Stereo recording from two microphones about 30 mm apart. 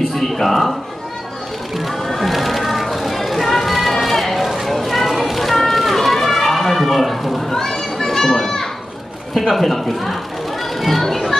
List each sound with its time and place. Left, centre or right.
0.1 s a sound: centre
1.9 s music: centre
3.9 s sheep: centre
4.6 s a sound: centre
5.7 s run: centre
7.4 s children playing: centre
9.3 s speech: centre
10.8 s children playing: centre